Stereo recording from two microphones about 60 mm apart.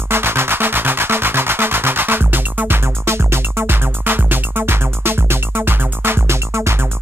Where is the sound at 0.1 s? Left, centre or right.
Right.